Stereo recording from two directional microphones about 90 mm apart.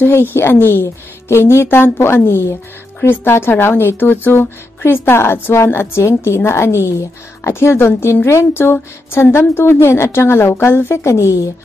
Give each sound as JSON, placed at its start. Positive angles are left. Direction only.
{"t": 0.0, "sound": "speech", "side_deg": 25}